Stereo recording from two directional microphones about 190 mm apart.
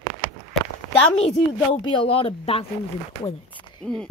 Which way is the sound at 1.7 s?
30° left (ahead or behind).